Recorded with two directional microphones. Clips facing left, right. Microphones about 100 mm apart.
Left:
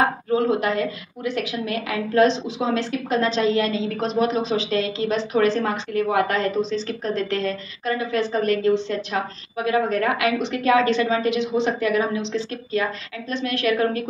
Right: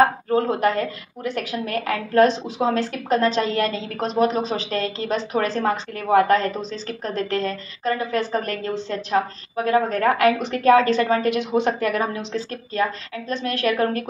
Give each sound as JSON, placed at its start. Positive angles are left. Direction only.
{"t": 0.5, "sound": "a woman's voice", "side_deg": -45}